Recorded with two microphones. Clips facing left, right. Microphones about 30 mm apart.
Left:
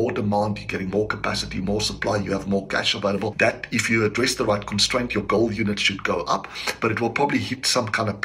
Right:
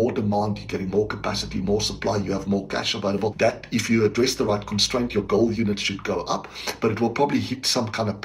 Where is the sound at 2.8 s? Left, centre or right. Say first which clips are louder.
Left 3 dB; left.